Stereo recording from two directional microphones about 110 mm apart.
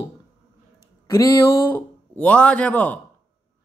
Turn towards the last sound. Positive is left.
turn(degrees=15)  # may be behind; listen again after turning